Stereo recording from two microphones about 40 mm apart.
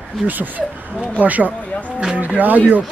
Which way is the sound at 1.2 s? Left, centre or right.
Right.